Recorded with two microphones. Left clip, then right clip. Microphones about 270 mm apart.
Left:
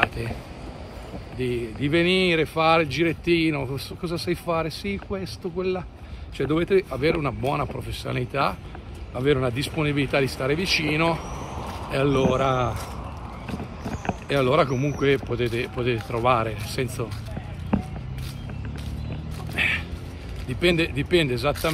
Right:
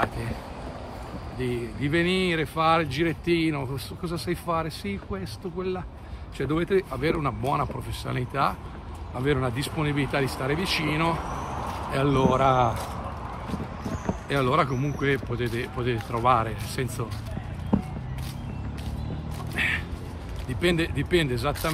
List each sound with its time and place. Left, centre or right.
1.8 s speech: centre
11.5 s a sound: right
11.9 s speech: centre
14.2 s speech: centre
19.6 s a sound: centre
20.6 s speech: centre